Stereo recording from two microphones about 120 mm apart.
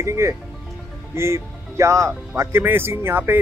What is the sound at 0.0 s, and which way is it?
Speech, 25° right (ahead or behind).